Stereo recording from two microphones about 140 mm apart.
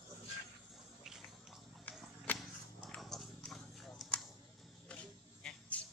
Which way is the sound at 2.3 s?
Centre (ahead or behind).